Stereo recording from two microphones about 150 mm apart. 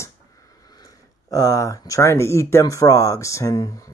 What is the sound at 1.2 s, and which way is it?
Speech, 25° left (ahead or behind).